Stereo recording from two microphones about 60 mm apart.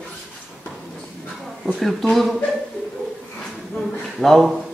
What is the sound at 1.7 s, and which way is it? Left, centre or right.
Speech, centre.